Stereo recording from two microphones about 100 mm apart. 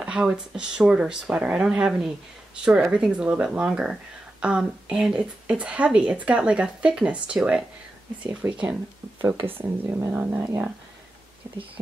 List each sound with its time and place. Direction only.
0.0 s a woman's voice: 10° right (ahead or behind)
9.5 s speech: 25° right (ahead or behind)